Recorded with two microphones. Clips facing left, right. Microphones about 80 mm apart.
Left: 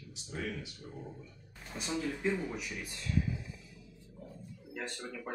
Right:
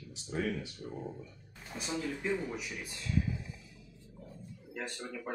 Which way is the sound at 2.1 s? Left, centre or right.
Centre.